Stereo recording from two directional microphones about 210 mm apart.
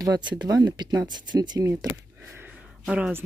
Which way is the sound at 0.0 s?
20° right (ahead or behind).